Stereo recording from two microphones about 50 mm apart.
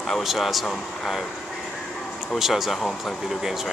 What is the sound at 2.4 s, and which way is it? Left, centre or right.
Speech, centre.